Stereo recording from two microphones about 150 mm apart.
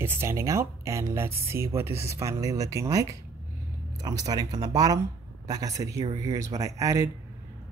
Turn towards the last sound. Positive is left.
turn(degrees=-20)  # may be behind; listen again after turning